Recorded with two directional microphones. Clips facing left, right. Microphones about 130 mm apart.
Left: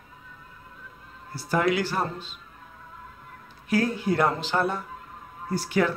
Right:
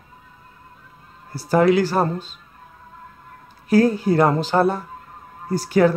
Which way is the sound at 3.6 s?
40° right (ahead or behind).